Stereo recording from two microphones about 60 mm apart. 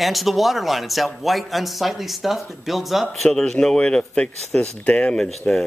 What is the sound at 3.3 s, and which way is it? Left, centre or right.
Speech, centre.